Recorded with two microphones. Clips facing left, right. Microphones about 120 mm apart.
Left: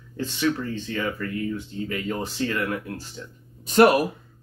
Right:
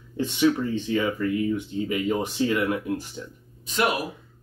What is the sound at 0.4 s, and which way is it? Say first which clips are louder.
Speech: right 4 dB; 15° right (ahead or behind).